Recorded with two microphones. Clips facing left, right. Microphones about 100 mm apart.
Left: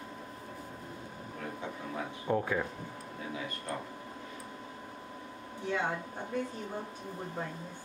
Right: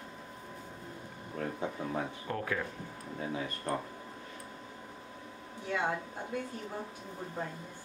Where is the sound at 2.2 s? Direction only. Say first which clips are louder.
Left 4 dB; 15° left (ahead or behind).